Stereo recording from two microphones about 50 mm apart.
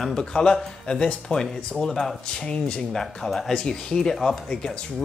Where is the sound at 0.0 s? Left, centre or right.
Centre.